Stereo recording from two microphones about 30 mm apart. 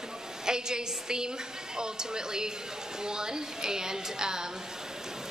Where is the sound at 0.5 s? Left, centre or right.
Right.